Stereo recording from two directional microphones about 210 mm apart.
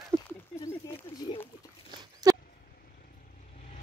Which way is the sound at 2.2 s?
20° right (ahead or behind).